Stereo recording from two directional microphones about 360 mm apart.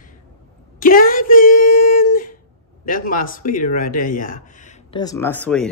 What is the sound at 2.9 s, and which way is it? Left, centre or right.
A man's voice, left.